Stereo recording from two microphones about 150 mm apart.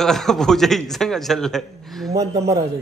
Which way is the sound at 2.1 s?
20° right (ahead or behind).